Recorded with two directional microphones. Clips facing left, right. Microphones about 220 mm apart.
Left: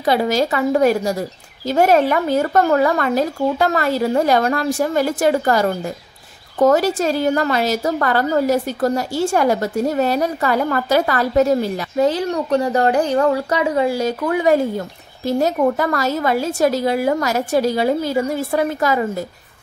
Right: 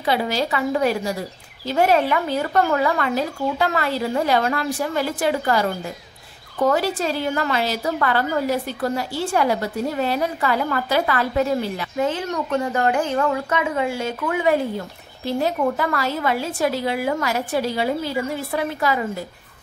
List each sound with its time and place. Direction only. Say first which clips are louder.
0.0 s a woman's voice: left 5 dB; 45° left (ahead or behind)